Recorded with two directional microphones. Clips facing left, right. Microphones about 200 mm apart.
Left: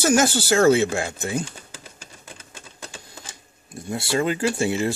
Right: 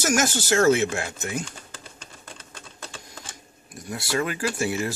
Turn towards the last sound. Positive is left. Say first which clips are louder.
# left 4 dB
turn(degrees=25)  # may be behind; listen again after turning